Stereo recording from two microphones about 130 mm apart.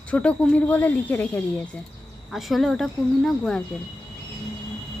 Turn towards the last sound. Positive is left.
turn(degrees=5)  # may be behind; listen again after turning